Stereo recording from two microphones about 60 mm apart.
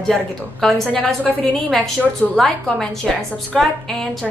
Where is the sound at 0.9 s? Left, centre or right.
Left.